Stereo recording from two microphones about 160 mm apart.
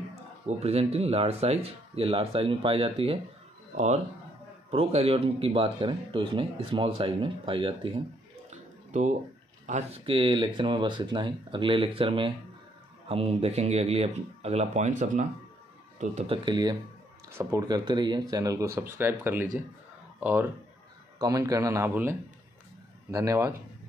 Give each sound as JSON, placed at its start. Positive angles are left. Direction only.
{"t": 0.5, "sound": "speech", "side_deg": -40}
{"t": 8.5, "sound": "a sound", "side_deg": -50}
{"t": 9.7, "sound": "speech", "side_deg": -40}
{"t": 16.4, "sound": "speech", "side_deg": -25}
{"t": 23.1, "sound": "speech", "side_deg": -20}